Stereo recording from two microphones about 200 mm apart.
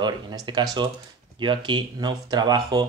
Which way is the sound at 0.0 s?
20° right (ahead or behind).